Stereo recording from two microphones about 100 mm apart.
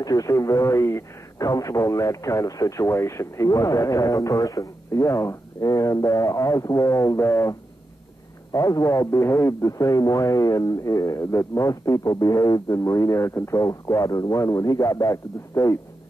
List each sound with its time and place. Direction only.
0.0 s a man's voice: 35° left (ahead or behind)